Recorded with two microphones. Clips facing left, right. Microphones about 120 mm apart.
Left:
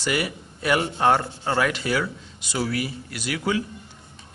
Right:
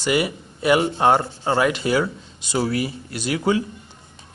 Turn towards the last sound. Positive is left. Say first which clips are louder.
# right 5 dB
turn(degrees=-25)  # may be behind; listen again after turning